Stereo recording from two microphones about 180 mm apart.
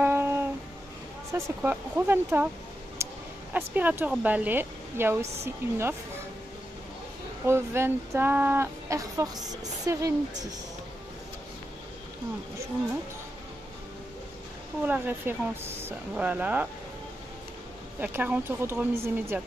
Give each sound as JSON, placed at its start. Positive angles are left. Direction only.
{"t": 0.0, "sound": "music", "side_deg": -10}
{"t": 1.3, "sound": "speech", "side_deg": -10}
{"t": 3.0, "sound": "a sound", "side_deg": -15}
{"t": 3.5, "sound": "speech", "side_deg": -10}
{"t": 7.4, "sound": "speech", "side_deg": -15}
{"t": 14.9, "sound": "speech", "side_deg": -10}
{"t": 18.0, "sound": "speech", "side_deg": -10}